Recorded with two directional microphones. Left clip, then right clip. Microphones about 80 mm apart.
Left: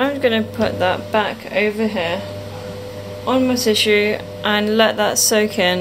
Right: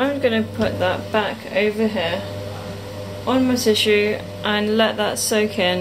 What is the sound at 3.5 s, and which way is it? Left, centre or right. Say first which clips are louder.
A woman's voice: even; left.